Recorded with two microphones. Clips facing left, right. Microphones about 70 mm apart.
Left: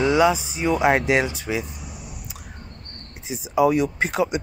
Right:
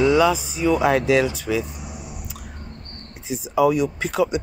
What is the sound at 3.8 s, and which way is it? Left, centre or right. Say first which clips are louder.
Speech: right 1 dB; left.